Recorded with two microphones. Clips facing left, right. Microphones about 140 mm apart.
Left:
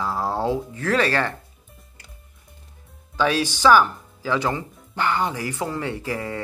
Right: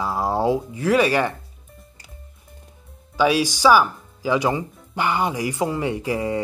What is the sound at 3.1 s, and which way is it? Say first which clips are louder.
Speech: right 3 dB; 10° right (ahead or behind).